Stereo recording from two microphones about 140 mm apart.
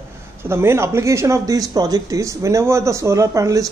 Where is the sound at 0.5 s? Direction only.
20° right (ahead or behind).